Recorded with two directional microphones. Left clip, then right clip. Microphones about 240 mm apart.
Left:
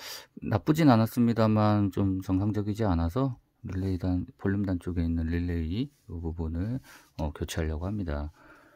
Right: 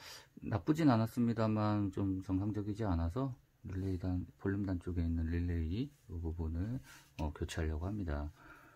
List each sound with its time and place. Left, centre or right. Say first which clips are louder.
0.0 s speech: left 10 dB; left